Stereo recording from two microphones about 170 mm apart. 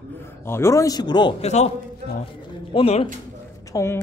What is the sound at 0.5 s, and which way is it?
Speech, 15° left (ahead or behind).